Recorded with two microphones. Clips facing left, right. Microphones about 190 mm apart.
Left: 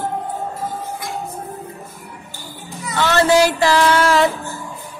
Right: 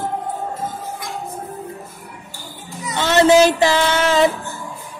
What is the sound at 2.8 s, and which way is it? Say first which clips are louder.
Child singing: right 2 dB; 20° right (ahead or behind).